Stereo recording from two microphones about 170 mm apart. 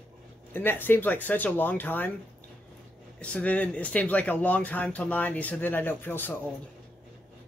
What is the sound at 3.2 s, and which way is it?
Speech, 5° left (ahead or behind).